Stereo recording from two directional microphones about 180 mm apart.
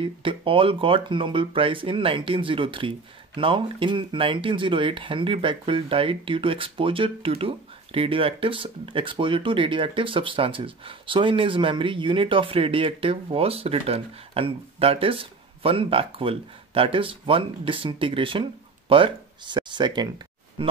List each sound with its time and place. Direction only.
0.0 s speech: 30° right (ahead or behind)